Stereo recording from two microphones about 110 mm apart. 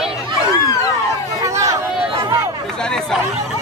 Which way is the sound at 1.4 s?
30° right (ahead or behind).